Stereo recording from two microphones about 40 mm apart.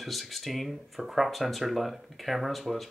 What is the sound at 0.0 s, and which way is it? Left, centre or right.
Speech, centre.